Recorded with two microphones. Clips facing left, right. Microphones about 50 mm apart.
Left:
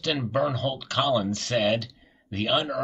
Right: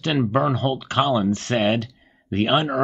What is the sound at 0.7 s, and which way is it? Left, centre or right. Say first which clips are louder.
Speech: right 4 dB; right.